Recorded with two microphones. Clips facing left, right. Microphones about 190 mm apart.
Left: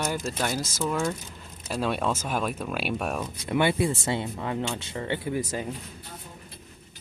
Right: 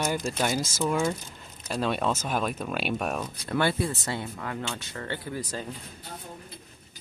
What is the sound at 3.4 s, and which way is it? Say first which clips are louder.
Speech: left 3 dB; 20° left (ahead or behind).